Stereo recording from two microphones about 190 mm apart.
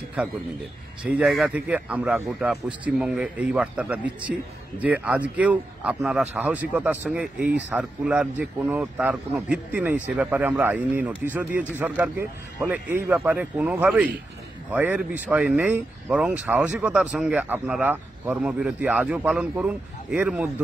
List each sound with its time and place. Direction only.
1.0 s speech: 5° right (ahead or behind)